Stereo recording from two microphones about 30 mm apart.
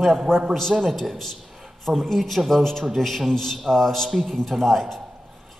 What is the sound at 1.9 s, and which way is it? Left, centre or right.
A man's voice, centre.